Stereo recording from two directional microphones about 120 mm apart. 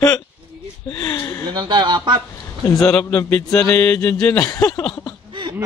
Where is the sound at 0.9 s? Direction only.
35° left (ahead or behind).